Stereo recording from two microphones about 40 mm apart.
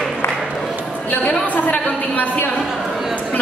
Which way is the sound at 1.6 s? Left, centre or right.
Left.